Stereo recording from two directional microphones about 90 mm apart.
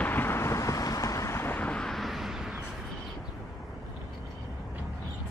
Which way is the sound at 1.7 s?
5° left (ahead or behind).